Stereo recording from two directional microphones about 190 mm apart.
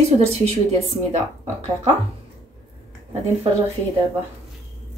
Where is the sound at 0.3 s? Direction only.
35° right (ahead or behind).